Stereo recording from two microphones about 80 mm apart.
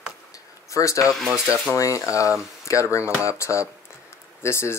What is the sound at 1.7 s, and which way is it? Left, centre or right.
Speech, left.